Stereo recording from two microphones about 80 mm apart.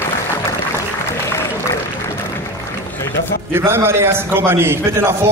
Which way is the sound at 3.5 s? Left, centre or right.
Right.